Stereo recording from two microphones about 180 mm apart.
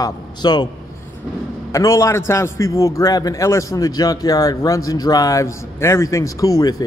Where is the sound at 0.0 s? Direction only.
25° left (ahead or behind).